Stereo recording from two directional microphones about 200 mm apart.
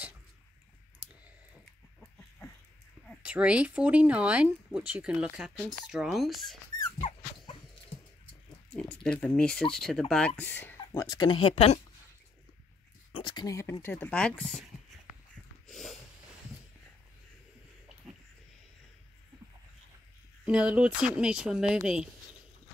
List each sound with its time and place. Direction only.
3.2 s speech: 5° right (ahead or behind)
7.0 s dog: 30° left (ahead or behind)
8.7 s speech: 5° left (ahead or behind); by 11.8 s 30° left (ahead or behind)
13.1 s speech: 25° left (ahead or behind); by 14.6 s 5° left (ahead or behind)
15.7 s snort: centre (ahead or behind)
20.4 s speech: 5° right (ahead or behind)